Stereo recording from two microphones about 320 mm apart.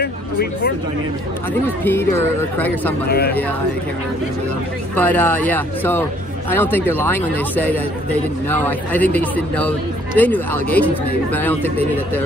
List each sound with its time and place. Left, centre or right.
0.0 s a sound: left
1.9 s speech: centre
3.1 s speech: left
4.9 s a man's voice: centre